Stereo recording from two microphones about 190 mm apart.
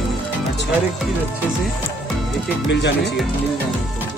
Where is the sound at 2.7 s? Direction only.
60° left (ahead or behind).